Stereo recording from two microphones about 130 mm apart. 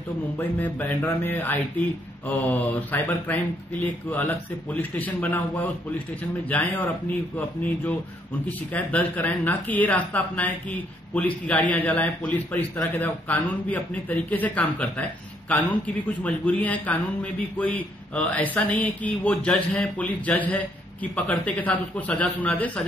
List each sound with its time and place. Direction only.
0.4 s speech: 15° left (ahead or behind)
7.3 s speech: 10° left (ahead or behind)